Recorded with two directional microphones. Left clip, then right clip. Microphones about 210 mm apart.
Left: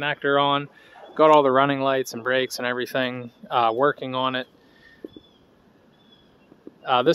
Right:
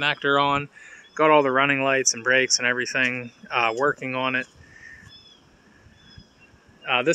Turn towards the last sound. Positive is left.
turn(degrees=20)  # may be behind; listen again after turning